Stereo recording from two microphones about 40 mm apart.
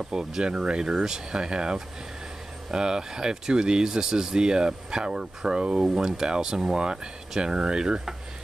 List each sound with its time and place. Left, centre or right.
0.0 s speech: centre